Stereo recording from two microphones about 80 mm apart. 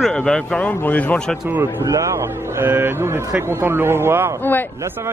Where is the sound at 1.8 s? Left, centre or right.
Right.